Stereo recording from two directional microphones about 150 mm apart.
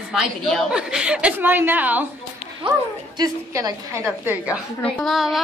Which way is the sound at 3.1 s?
25° right (ahead or behind).